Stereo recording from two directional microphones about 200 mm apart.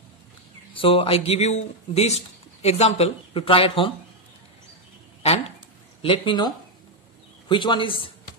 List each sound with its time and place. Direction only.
0.7 s speech: 25° left (ahead or behind)
6.0 s speech: 25° left (ahead or behind)